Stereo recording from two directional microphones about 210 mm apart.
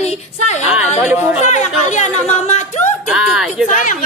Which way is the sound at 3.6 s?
35° left (ahead or behind).